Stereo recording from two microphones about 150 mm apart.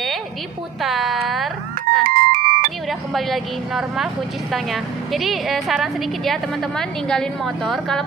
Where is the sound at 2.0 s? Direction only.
65° right (ahead or behind).